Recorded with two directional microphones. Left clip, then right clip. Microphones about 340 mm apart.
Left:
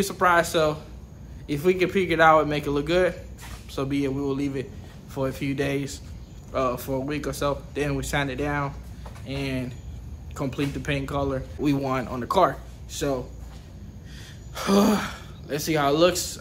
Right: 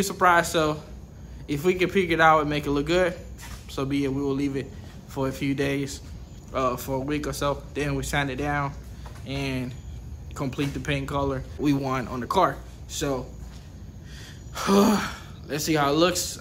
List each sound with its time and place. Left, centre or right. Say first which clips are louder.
0.0 s speech: even; centre
14.5 s speech: right 1 dB; centre